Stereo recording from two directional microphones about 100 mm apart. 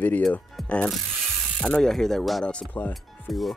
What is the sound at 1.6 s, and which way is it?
Speech, 5° left (ahead or behind).